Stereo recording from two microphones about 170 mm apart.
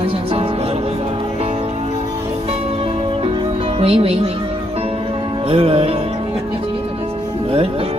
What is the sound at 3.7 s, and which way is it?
Speech, 35° right (ahead or behind).